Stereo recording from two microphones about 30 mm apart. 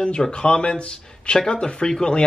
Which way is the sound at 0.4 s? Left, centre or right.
Left.